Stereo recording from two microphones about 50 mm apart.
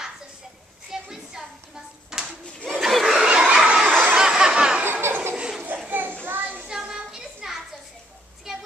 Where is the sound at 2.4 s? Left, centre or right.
Centre.